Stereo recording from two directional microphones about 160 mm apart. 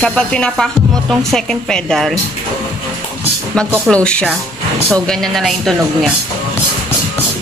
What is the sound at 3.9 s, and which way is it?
A woman's voice, 5° left (ahead or behind).